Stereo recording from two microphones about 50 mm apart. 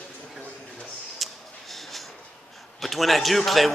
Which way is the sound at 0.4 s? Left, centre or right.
Left.